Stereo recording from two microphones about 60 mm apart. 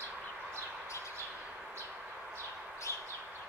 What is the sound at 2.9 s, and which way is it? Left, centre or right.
Bird, right.